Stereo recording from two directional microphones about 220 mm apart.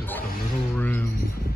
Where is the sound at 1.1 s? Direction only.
45° left (ahead or behind).